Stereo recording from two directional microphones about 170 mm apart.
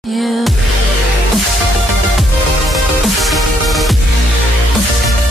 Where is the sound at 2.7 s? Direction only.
Centre (ahead or behind).